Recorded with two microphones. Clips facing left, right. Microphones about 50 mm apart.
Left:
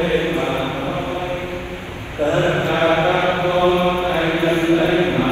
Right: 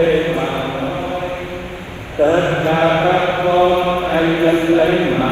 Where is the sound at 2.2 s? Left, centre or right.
Right.